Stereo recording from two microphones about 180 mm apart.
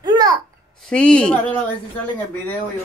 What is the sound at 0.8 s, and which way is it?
Speech, 5° left (ahead or behind).